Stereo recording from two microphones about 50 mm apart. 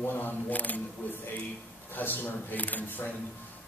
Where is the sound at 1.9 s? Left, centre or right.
Left.